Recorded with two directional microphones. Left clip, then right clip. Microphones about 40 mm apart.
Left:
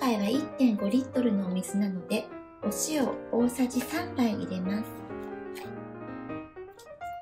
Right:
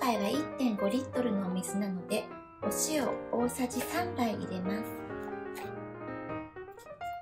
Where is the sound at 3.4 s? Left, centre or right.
Right.